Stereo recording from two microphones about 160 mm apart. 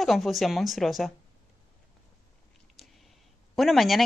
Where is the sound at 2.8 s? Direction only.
Centre (ahead or behind).